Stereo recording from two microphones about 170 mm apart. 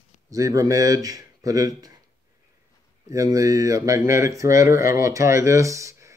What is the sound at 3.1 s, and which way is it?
Speech, 20° right (ahead or behind).